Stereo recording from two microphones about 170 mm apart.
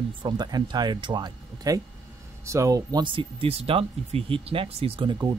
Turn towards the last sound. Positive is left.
turn(degrees=-25)  # may be behind; listen again after turning